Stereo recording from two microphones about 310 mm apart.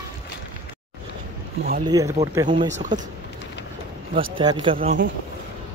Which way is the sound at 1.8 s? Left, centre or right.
Centre.